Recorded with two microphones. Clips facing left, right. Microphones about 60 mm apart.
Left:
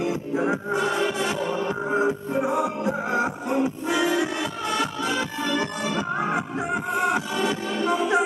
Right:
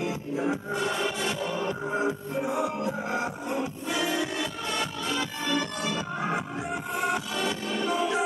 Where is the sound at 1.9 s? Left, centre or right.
Left.